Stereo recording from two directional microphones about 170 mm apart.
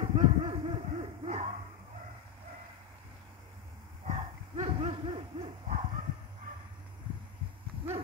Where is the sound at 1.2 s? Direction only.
40° right (ahead or behind).